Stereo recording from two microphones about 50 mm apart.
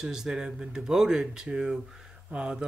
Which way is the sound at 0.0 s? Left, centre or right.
Centre.